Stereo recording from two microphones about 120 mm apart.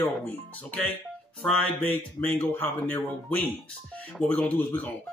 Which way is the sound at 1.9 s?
15° left (ahead or behind).